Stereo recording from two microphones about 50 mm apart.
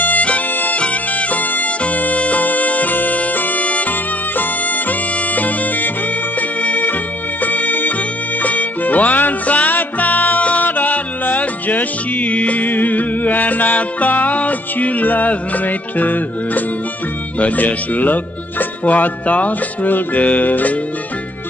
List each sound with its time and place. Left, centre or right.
0.0 s music: left
17.4 s speech: left